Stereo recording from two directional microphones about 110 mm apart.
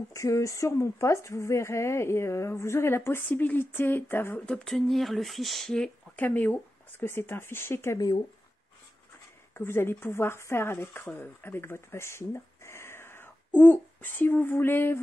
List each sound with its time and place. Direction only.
0.1 s a woman's voice: 30° left (ahead or behind)
4.5 s speech: 5° left (ahead or behind)
6.1 s a woman's voice: 15° left (ahead or behind)
9.5 s a woman's voice: 20° left (ahead or behind)